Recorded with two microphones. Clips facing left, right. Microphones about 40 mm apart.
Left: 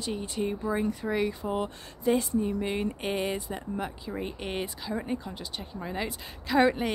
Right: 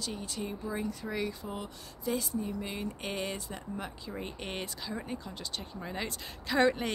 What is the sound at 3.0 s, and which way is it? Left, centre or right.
Speech, centre.